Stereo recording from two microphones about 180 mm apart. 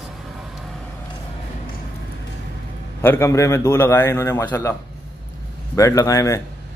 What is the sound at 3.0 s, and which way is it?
A man's voice, 15° left (ahead or behind).